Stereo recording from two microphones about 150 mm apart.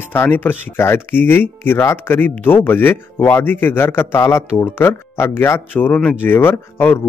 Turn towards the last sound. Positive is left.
turn(degrees=15)  # may be behind; listen again after turning